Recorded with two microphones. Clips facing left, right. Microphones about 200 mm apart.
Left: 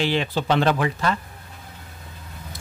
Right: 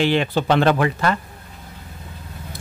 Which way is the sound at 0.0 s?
60° right (ahead or behind).